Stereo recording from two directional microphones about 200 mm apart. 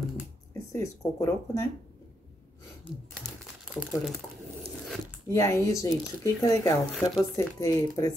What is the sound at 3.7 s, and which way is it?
Speech, centre (ahead or behind).